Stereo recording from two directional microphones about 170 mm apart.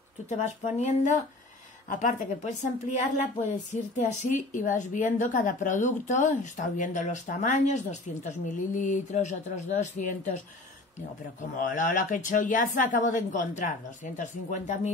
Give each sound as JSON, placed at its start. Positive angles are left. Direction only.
{"t": 0.3, "sound": "a woman's voice", "side_deg": 45}
{"t": 11.5, "sound": "a woman's voice", "side_deg": 50}